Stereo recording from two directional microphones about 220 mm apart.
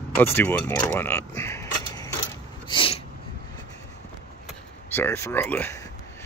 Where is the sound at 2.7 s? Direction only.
25° left (ahead or behind).